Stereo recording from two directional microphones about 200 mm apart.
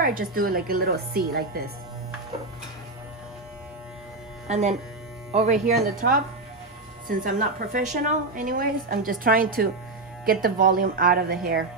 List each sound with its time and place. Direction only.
0.0 s a woman's voice: 45° right (ahead or behind)
4.5 s a woman's voice: 35° right (ahead or behind); by 11.6 s 50° right (ahead or behind)